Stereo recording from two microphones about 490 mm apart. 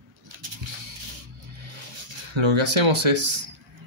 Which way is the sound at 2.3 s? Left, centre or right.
Right.